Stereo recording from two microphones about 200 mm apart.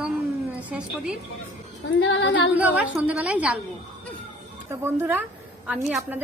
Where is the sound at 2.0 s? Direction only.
65° left (ahead or behind).